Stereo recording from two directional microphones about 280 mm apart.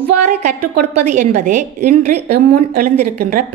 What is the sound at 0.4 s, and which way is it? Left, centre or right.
A woman's voice, right.